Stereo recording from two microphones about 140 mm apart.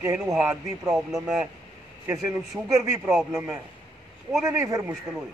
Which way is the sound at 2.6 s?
20° right (ahead or behind).